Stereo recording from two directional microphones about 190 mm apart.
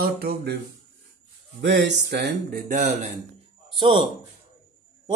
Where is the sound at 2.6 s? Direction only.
40° right (ahead or behind).